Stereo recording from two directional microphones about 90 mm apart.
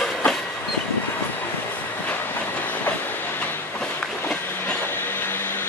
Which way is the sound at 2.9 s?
20° left (ahead or behind).